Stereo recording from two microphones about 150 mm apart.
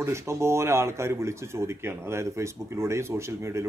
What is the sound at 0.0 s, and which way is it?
Speech, 20° right (ahead or behind).